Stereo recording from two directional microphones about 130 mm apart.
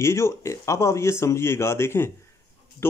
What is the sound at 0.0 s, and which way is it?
Speech, 20° left (ahead or behind).